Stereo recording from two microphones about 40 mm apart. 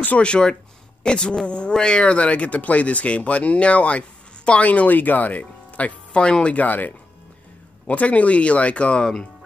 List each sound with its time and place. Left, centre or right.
0.2 s speech: left
5.7 s music: left
6.1 s speech: left
6.5 s speech: left